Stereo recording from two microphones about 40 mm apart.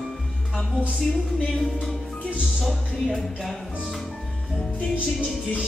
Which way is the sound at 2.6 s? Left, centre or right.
Centre.